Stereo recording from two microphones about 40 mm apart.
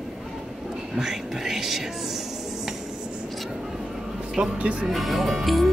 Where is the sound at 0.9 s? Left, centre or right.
Centre.